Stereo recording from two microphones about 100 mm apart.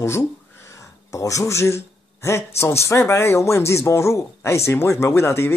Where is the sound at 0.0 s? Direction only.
25° left (ahead or behind).